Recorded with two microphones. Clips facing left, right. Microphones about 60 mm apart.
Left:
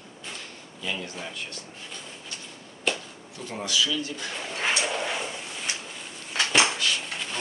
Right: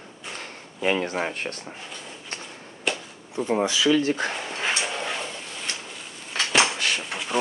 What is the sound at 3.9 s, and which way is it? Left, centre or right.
Speech, right.